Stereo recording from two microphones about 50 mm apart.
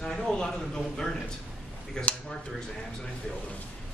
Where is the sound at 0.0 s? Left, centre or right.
Centre.